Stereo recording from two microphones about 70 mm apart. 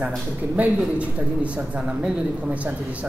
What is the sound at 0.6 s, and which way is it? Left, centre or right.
Speech, centre.